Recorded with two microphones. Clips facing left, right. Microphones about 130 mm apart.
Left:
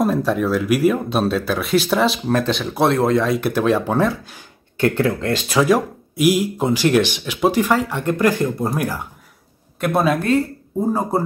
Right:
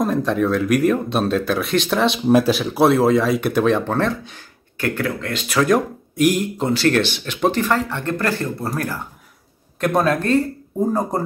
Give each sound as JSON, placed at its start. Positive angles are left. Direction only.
{"t": 0.0, "sound": "speech", "side_deg": 5}
{"t": 4.7, "sound": "speech", "side_deg": 25}
{"t": 5.6, "sound": "speech", "side_deg": 10}